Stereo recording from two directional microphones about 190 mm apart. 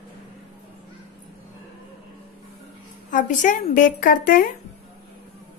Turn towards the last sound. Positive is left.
turn(degrees=45)  # may be behind; listen again after turning